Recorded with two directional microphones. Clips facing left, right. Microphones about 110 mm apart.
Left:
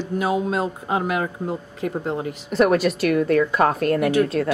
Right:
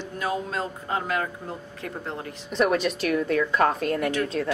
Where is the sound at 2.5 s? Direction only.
5° left (ahead or behind).